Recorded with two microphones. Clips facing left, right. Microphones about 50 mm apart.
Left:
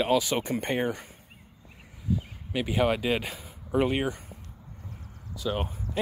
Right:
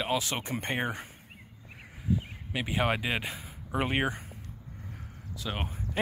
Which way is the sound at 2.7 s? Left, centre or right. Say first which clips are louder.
Left 3 dB; right.